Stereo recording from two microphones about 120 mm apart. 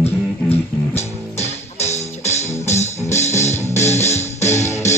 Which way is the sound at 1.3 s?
65° left (ahead or behind).